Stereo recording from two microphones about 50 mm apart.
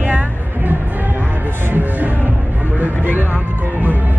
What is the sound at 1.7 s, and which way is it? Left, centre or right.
Speech, right.